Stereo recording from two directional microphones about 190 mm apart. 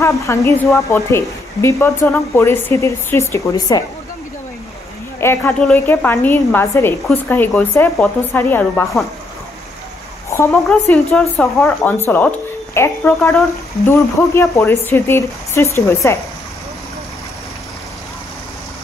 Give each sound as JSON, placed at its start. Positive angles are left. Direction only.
{"t": 0.0, "sound": "speech", "side_deg": 15}
{"t": 5.2, "sound": "speech", "side_deg": 10}
{"t": 10.5, "sound": "speech", "side_deg": 5}